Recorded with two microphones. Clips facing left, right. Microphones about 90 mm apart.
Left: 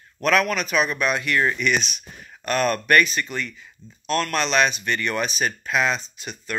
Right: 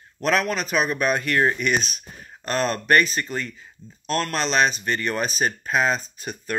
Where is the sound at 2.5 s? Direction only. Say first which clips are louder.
Left 1 dB; 30° right (ahead or behind).